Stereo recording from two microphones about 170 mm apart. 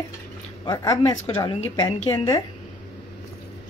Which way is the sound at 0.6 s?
20° left (ahead or behind).